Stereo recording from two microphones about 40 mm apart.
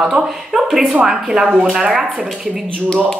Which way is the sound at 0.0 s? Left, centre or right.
Centre.